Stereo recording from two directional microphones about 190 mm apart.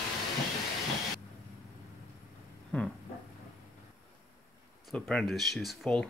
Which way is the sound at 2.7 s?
5° left (ahead or behind).